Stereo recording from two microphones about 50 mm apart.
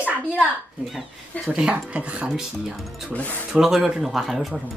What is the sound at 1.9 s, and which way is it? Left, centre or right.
Speech, right.